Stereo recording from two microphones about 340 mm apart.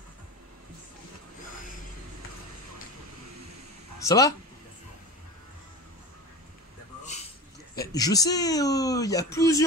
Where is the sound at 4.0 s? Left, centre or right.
Centre.